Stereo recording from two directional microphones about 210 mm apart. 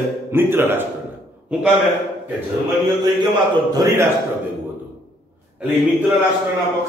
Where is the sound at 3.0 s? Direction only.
20° right (ahead or behind).